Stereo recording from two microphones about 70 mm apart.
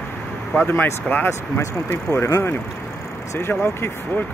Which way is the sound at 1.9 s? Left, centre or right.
Left.